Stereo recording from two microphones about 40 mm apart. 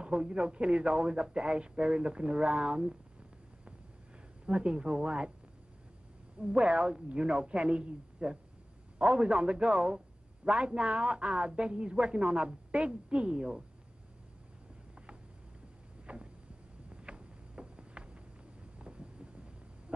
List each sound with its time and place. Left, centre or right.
0.0 s a woman's voice: right
4.5 s a woman's voice: right
6.4 s a woman's voice: right
16.1 s a sound: right